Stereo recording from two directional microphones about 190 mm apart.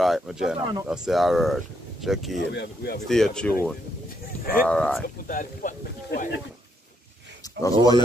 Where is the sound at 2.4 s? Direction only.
65° left (ahead or behind).